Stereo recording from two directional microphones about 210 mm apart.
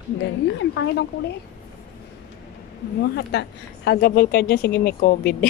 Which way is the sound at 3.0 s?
55° left (ahead or behind).